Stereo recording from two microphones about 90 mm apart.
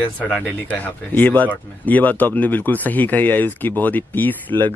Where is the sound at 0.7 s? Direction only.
20° left (ahead or behind).